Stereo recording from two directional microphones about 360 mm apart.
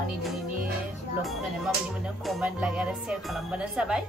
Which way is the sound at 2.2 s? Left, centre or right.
Centre.